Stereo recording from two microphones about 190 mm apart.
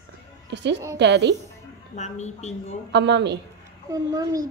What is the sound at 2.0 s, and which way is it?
Speech, 35° left (ahead or behind).